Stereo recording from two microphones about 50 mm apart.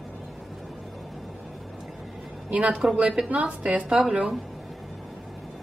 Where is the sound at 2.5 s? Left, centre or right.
Right.